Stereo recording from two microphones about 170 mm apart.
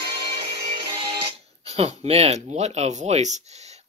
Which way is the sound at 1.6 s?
35° right (ahead or behind).